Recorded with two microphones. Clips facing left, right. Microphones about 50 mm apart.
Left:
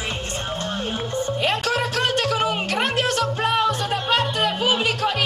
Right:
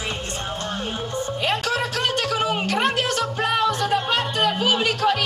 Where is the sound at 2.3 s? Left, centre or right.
Centre.